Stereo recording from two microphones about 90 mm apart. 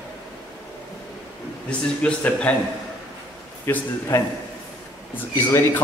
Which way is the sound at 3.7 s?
25° left (ahead or behind).